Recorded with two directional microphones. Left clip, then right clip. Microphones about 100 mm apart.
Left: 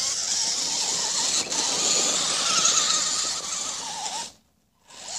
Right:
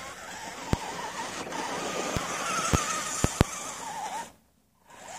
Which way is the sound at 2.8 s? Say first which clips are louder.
Left 7 dB; 35° right (ahead or behind).